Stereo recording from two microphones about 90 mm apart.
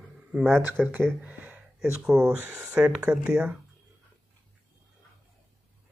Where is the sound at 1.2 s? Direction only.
20° right (ahead or behind).